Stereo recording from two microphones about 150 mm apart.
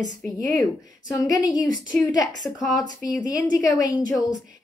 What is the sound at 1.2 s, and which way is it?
Speech, 25° left (ahead or behind).